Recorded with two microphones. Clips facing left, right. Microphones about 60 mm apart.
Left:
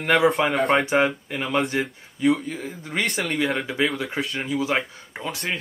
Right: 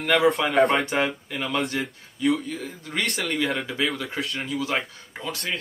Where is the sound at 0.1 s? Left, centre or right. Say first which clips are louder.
Left 1 dB; centre.